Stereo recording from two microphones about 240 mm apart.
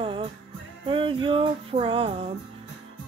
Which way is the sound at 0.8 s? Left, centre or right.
Right.